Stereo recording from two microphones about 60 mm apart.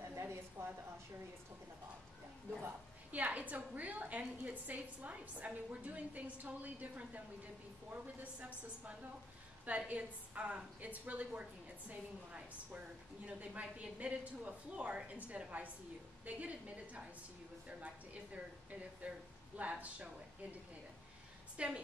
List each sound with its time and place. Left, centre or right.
0.1 s a sound: right
3.1 s a woman's voice: right
21.5 s a woman's voice: centre